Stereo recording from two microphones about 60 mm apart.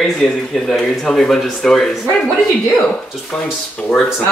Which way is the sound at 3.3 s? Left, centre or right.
Centre.